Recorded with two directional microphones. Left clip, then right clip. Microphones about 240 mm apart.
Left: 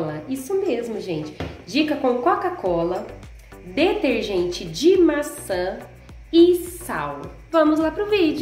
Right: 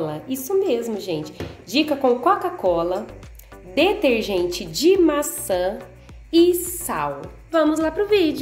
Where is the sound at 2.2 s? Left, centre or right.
Right.